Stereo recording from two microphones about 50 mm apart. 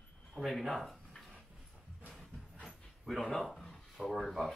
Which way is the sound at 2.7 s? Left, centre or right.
Centre.